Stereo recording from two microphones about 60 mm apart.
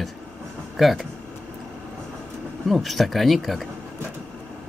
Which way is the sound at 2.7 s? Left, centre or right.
Centre.